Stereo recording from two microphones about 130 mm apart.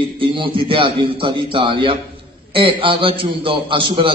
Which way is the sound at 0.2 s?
40° right (ahead or behind).